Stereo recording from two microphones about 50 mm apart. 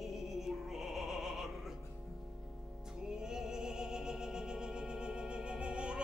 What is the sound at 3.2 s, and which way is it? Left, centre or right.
Music, centre.